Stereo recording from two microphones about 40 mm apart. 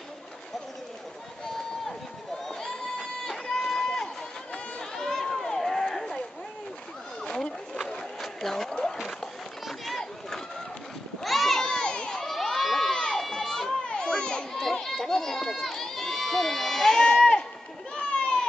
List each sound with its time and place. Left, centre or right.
2.4 s crowd: centre
3.5 s run: centre
3.8 s run: centre
7.2 s wild animals: centre
8.2 s a sound: centre
8.9 s run: centre
11.2 s a sound: centre
11.7 s crowd: left
12.2 s children shouting: centre
12.9 s run: left
13.8 s crowd: left
14.5 s run: centre
17.9 s a sound: left